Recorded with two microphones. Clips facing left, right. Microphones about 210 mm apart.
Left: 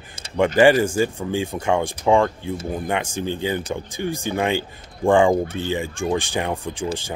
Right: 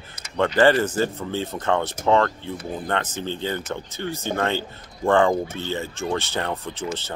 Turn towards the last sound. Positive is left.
turn(degrees=15)  # may be behind; listen again after turning